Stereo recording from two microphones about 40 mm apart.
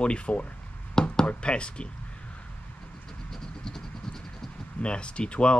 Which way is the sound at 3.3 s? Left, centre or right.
Centre.